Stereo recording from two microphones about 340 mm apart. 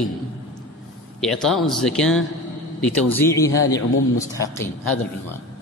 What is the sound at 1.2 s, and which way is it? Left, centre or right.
A man's voice, centre.